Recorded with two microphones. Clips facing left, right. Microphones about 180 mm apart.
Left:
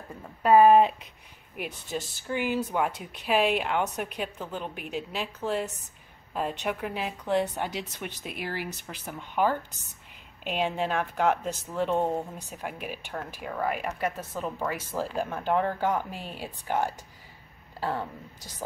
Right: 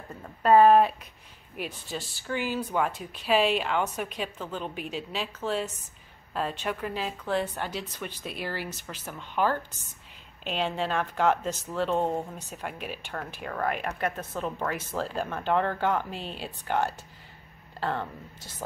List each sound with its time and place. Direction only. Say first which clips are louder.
0.1 s speech: even; 10° left (ahead or behind)
2.2 s speech: left 1 dB; 15° left (ahead or behind)